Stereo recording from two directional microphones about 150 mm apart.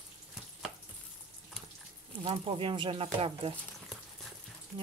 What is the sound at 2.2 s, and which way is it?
Speech, 35° right (ahead or behind).